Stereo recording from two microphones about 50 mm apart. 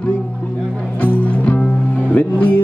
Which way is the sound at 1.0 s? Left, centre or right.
Left.